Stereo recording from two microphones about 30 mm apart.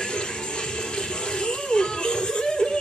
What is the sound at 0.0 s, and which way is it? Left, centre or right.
Music, left.